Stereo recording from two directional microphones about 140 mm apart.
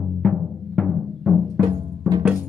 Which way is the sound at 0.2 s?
5° left (ahead or behind).